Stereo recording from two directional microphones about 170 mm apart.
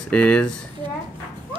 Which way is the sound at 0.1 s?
5° left (ahead or behind).